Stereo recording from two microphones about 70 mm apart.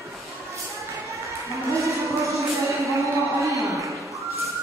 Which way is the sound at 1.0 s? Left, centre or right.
Right.